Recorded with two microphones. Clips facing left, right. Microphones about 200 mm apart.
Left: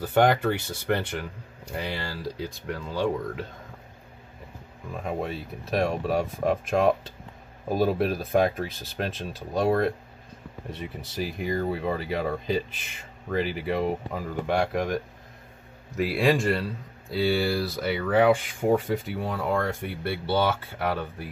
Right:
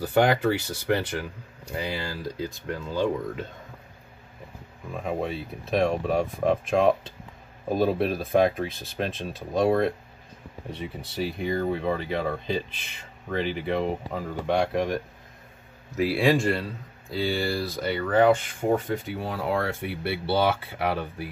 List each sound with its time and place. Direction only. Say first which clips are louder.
0.1 s speech: even; 5° right (ahead or behind)
5.8 s speech: right 2 dB; 5° left (ahead or behind)
16.0 s speech: right 1 dB; centre (ahead or behind)